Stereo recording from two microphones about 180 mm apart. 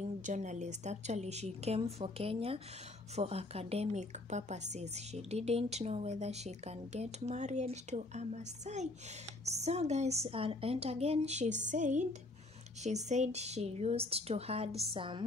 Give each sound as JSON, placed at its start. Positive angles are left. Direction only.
{"t": 0.3, "sound": "a woman's voice", "side_deg": -40}